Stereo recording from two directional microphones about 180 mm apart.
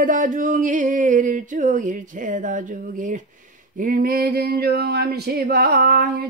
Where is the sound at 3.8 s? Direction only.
50° right (ahead or behind).